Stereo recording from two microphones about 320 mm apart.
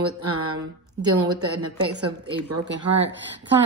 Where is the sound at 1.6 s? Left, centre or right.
Right.